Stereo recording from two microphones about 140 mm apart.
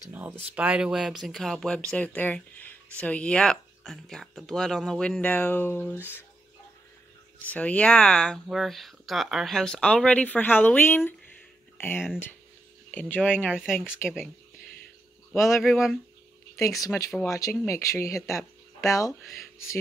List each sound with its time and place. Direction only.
0.1 s speech: 10° right (ahead or behind); by 6.2 s 15° left (ahead or behind)
7.4 s speech: 10° left (ahead or behind)
13.5 s speech: 5° right (ahead or behind)
14.0 s speech: 10° left (ahead or behind)
15.3 s speech: 20° left (ahead or behind)
15.6 s speech: centre (ahead or behind)
17.2 s speech: 20° left (ahead or behind)